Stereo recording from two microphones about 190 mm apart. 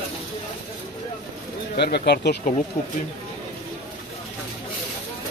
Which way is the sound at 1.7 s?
60° left (ahead or behind).